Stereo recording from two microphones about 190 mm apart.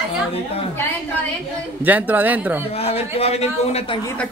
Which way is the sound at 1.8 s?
10° right (ahead or behind).